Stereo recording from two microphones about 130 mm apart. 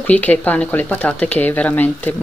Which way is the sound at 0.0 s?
10° left (ahead or behind).